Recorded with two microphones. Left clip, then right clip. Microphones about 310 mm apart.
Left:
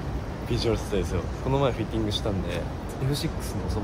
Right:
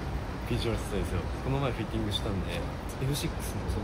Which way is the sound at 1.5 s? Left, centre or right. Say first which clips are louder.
Left 8 dB; centre.